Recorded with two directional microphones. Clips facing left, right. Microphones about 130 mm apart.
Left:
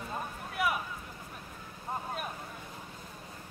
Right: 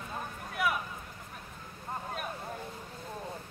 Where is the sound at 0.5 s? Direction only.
Centre (ahead or behind).